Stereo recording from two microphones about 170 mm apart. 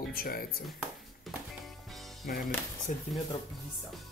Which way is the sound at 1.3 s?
Centre (ahead or behind).